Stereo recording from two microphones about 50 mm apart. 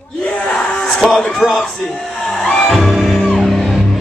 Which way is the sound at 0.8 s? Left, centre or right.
Centre.